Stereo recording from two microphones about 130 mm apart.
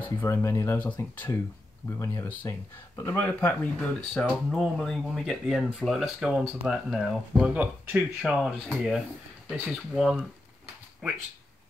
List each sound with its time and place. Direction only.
0.0 s speech: 20° left (ahead or behind)
4.1 s speech: 5° left (ahead or behind)